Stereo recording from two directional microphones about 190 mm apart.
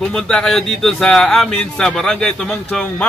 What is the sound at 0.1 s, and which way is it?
A man's voice, 5° left (ahead or behind).